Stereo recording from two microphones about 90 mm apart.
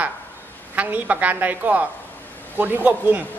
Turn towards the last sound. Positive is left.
turn(degrees=-20)  # may be behind; listen again after turning